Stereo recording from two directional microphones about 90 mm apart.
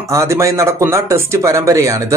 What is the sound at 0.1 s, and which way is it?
Speech, 35° right (ahead or behind).